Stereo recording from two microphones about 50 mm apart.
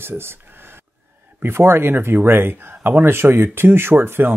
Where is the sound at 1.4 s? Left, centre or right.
Right.